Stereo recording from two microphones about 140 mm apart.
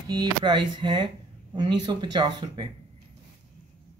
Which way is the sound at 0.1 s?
30° right (ahead or behind).